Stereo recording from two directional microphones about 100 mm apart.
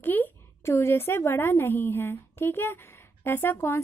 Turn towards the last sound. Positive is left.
turn(degrees=25)  # may be behind; listen again after turning